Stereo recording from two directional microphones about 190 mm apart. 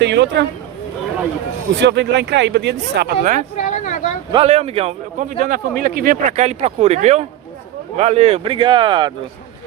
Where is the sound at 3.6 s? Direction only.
40° left (ahead or behind).